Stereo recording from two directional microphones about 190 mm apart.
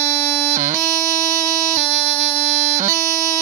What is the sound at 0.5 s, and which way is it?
Music, 40° right (ahead or behind).